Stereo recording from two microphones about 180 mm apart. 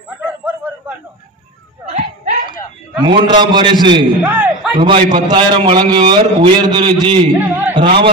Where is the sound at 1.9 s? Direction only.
45° right (ahead or behind).